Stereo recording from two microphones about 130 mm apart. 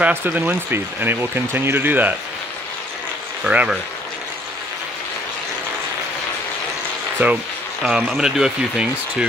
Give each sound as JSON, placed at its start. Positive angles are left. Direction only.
{"t": 0.0, "sound": "speech", "side_deg": -15}
{"t": 3.4, "sound": "speech", "side_deg": -10}
{"t": 7.2, "sound": "speech", "side_deg": -15}